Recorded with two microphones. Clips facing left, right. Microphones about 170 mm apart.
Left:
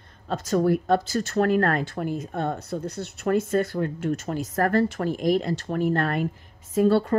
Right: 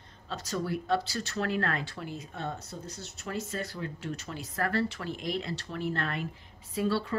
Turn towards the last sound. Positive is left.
turn(degrees=50)  # may be behind; listen again after turning